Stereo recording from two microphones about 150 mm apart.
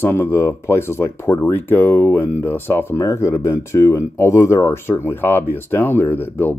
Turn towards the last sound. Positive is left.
turn(degrees=15)  # may be behind; listen again after turning